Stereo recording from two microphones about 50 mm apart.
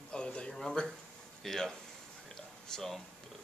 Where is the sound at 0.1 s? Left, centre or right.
Centre.